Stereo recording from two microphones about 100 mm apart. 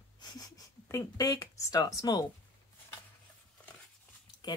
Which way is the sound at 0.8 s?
30° left (ahead or behind).